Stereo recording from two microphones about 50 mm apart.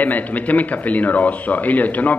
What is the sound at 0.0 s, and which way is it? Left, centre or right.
Speech, left.